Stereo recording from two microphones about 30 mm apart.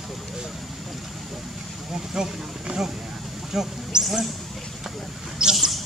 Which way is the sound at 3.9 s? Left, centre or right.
Right.